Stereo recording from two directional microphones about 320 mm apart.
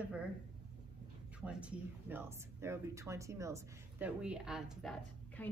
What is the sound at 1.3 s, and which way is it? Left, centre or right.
Speech, centre.